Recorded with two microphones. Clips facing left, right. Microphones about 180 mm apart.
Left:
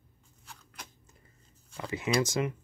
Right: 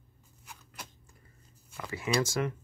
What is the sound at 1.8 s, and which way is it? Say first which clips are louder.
Speech: left 1 dB; 20° left (ahead or behind).